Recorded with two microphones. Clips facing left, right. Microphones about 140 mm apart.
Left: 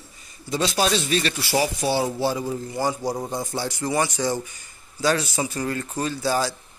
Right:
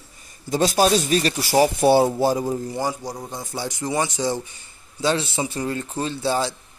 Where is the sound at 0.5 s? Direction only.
45° right (ahead or behind).